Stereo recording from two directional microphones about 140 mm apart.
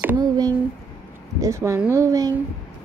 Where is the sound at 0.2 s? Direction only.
30° right (ahead or behind).